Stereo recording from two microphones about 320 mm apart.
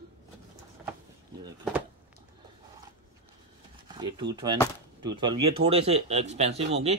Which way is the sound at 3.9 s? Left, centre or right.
Centre.